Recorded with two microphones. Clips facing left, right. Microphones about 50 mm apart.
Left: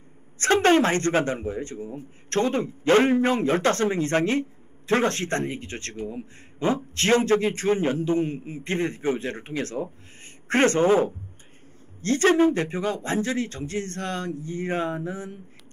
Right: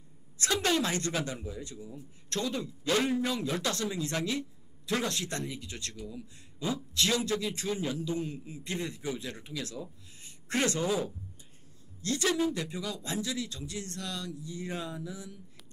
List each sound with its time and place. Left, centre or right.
0.4 s a man's voice: left